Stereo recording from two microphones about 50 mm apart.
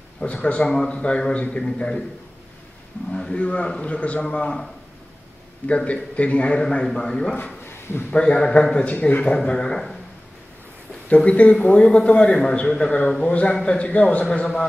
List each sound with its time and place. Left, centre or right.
0.2 s a man's voice: left
3.1 s a sound: centre
3.3 s a man's voice: left
5.7 s a man's voice: left
7.6 s a sound: left
8.1 s a man's voice: centre
9.3 s speech: centre
11.1 s a man's voice: left